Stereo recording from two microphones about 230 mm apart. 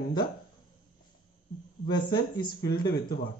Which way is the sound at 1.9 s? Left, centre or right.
Centre.